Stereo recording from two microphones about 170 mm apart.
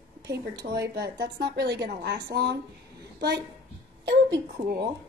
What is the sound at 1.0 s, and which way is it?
A woman's voice, 75° right (ahead or behind).